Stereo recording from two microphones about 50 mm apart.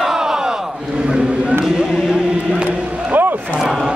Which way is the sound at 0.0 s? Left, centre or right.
Centre.